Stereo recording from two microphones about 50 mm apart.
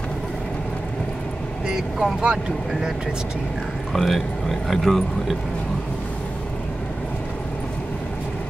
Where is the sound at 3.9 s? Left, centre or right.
Centre.